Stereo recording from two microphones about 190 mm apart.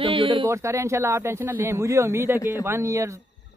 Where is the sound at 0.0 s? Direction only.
30° right (ahead or behind).